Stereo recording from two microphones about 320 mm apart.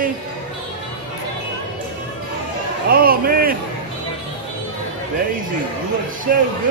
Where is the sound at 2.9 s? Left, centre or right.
Right.